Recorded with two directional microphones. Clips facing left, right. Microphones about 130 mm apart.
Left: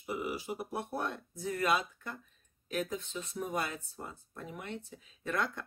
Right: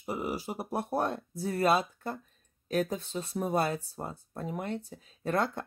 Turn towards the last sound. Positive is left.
turn(degrees=-35)  # may be behind; listen again after turning